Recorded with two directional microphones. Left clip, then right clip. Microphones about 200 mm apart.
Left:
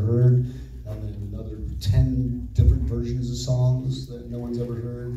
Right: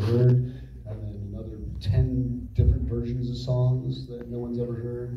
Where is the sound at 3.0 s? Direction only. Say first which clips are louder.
Left 2 dB; 40° left (ahead or behind).